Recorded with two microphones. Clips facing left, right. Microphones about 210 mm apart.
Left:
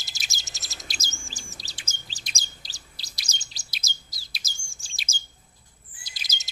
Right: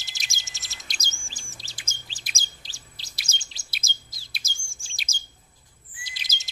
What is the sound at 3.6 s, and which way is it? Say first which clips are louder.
Chirp: right 1 dB; centre (ahead or behind).